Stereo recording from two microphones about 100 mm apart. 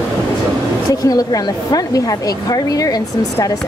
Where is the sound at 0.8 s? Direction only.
35° left (ahead or behind).